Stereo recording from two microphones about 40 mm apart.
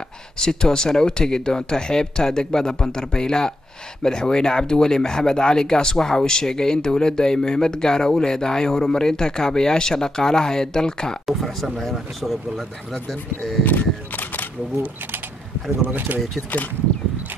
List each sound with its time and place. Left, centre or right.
0.4 s speech: centre
11.2 s speech: centre
13.7 s single-lens reflex camera: left
16.1 s speech: right
16.5 s speech: left